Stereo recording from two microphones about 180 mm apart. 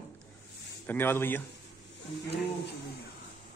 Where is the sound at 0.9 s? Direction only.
10° left (ahead or behind).